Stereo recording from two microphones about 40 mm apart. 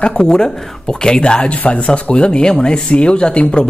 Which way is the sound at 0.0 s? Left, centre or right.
Left.